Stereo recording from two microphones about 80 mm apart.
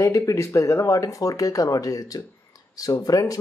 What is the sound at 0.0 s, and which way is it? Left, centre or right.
Speech, left.